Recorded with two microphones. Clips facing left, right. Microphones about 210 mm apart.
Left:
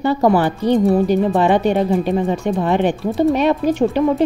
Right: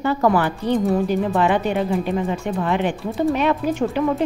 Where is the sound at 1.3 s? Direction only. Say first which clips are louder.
Left 4 dB; 30° left (ahead or behind).